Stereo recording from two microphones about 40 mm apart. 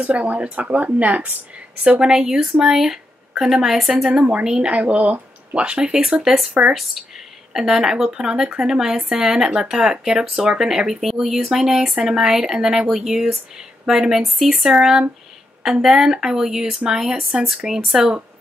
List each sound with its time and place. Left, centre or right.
0.0 s a woman's voice: right
2.0 s speech: centre
3.9 s speech: right
6.2 s speech: centre
7.8 s speech: centre